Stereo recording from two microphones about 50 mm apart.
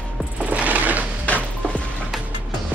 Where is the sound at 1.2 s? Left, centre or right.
Left.